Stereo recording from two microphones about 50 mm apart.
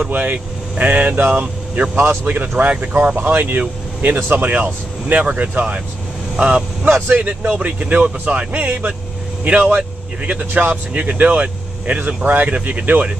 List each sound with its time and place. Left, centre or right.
0.0 s speech: right
3.2 s speech: right
10.9 s speech: right